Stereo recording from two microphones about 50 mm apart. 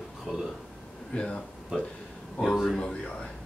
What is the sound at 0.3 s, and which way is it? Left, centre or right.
Speech, centre.